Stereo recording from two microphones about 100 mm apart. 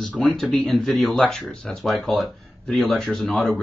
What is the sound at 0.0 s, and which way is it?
Speech, 5° left (ahead or behind).